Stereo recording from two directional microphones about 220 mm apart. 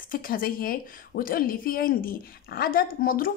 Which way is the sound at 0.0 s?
40° left (ahead or behind).